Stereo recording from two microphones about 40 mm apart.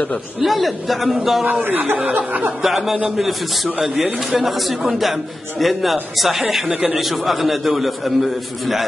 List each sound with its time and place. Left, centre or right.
0.4 s a man's voice: centre
1.4 s speech: right
2.6 s a man's voice: centre
3.8 s a man's voice: centre
4.4 s a man's voice: centre
6.7 s a man's voice: right
7.0 s a man's voice: centre